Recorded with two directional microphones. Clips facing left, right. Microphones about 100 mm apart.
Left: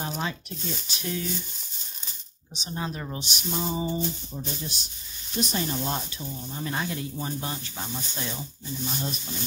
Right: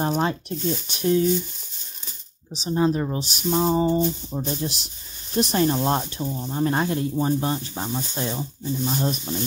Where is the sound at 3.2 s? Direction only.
40° right (ahead or behind).